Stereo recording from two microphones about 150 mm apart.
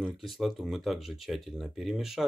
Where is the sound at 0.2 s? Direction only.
Centre (ahead or behind).